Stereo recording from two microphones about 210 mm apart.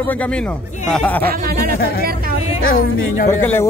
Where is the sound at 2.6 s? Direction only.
45° left (ahead or behind).